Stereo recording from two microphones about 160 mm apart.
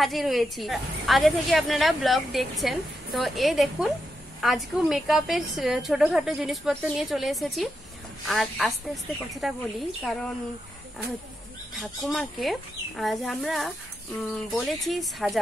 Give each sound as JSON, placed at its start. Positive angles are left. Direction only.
{"t": 0.0, "sound": "a woman's voice", "side_deg": 0}
{"t": 11.7, "sound": "a woman's voice", "side_deg": 0}